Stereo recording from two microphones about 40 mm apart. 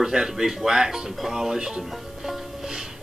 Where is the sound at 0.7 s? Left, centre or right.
Centre.